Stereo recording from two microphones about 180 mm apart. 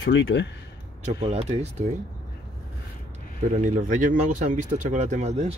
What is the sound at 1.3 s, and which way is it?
Speech, 35° right (ahead or behind).